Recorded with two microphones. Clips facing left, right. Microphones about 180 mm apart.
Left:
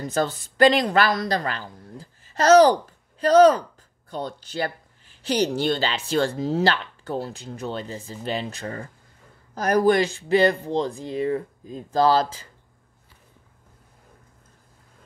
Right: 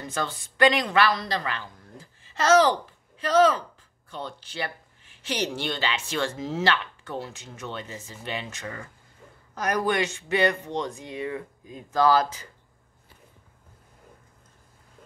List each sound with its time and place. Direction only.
0.0 s a woman's voice: 40° left (ahead or behind)